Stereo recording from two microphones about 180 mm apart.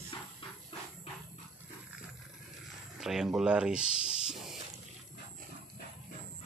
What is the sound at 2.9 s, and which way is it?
Speech, centre (ahead or behind).